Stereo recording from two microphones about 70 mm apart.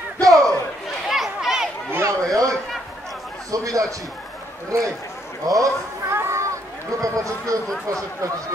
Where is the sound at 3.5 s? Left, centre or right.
Right.